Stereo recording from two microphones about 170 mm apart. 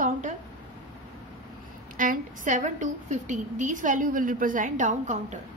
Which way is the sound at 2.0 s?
50° right (ahead or behind).